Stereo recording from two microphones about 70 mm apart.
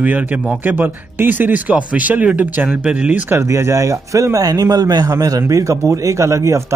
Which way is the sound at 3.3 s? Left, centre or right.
Right.